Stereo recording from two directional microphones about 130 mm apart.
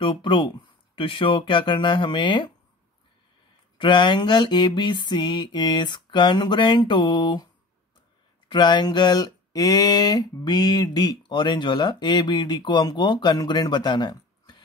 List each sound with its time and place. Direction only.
0.0 s speech: 40° left (ahead or behind)
3.7 s speech: 40° left (ahead or behind)
8.5 s speech: 35° left (ahead or behind)